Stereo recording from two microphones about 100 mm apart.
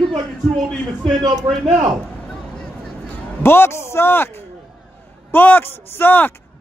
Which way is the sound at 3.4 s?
25° left (ahead or behind).